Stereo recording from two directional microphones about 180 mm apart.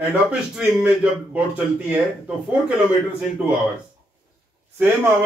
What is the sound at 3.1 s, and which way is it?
Speech, 10° right (ahead or behind).